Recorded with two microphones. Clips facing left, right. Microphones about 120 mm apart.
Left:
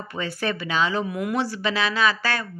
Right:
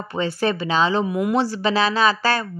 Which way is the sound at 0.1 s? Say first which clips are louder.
Right 6 dB; 30° right (ahead or behind).